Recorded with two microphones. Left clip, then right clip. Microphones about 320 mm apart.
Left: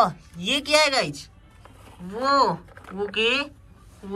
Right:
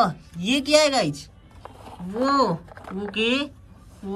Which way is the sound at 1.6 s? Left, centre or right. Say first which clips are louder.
Right 8 dB; right.